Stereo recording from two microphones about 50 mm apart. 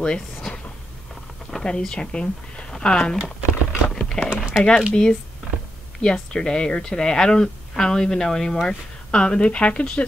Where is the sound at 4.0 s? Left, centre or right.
Centre.